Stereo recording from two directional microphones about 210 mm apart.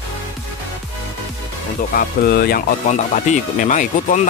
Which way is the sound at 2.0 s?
50° left (ahead or behind).